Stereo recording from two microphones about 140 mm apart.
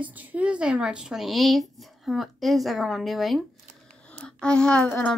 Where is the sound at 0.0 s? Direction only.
10° right (ahead or behind).